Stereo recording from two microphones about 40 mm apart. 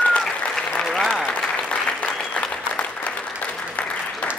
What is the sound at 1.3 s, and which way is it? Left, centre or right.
Applause, left.